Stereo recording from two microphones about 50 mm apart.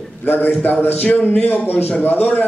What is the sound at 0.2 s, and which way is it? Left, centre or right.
A man's voice, left.